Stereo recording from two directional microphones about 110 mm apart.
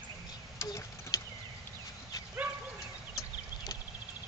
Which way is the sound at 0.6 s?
30° left (ahead or behind).